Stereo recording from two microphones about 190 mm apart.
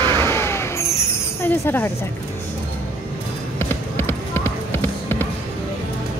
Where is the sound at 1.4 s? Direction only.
10° left (ahead or behind).